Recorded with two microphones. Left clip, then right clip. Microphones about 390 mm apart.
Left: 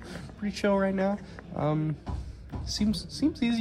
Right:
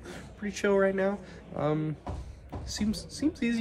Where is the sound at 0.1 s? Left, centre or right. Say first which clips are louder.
Left 1 dB; centre.